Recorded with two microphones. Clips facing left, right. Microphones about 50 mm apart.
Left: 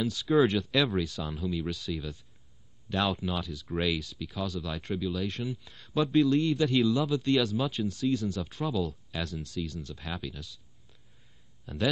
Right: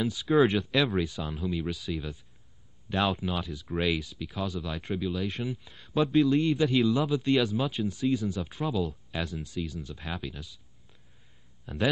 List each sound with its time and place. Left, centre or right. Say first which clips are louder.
0.0 s speech: right 1 dB; centre
3.4 s speech: right 1 dB; centre
3.7 s speech: right 1 dB; centre
11.6 s speech: right 1 dB; centre